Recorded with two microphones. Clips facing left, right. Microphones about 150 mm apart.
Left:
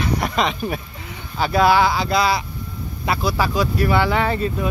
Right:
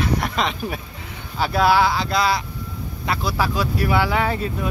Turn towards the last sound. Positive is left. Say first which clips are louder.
# left 2 dB
turn(degrees=-5)  # may be behind; listen again after turning